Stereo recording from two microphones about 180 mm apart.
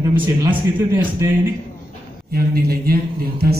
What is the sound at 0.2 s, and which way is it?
Speech, 10° right (ahead or behind).